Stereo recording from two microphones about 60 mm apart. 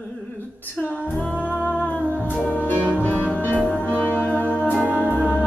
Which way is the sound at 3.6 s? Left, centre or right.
Left.